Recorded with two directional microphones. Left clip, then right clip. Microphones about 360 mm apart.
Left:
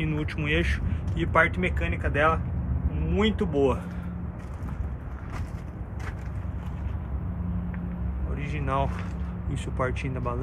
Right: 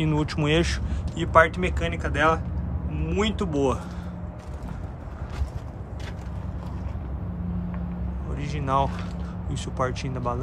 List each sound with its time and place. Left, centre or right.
0.0 s speech: centre
8.5 s speech: centre